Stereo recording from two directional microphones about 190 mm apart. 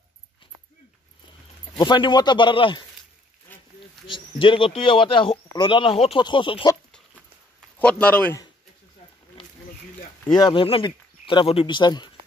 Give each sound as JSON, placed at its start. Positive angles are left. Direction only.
{"t": 1.8, "sound": "speech", "side_deg": 25}
{"t": 4.1, "sound": "speech", "side_deg": 25}
{"t": 7.8, "sound": "a man's voice", "side_deg": 5}
{"t": 10.3, "sound": "speech", "side_deg": 25}